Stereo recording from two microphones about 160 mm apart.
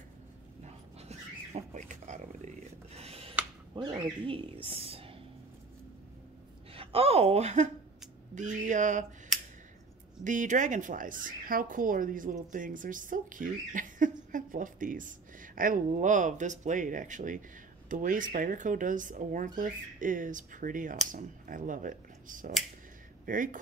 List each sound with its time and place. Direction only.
0.7 s dog: 40° right (ahead or behind)
3.7 s a woman's voice: 25° right (ahead or behind)
6.7 s a sound: 35° right (ahead or behind)
8.4 s speech: 50° right (ahead or behind)
9.3 s a sound: centre (ahead or behind)
10.2 s a woman's voice: 50° right (ahead or behind)